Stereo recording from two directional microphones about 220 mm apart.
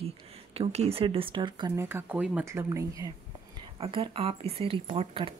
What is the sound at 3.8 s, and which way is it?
Speech, 25° right (ahead or behind).